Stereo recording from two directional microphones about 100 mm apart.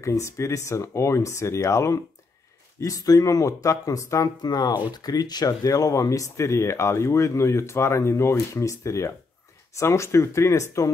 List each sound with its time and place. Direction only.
0.0 s speech: 30° left (ahead or behind)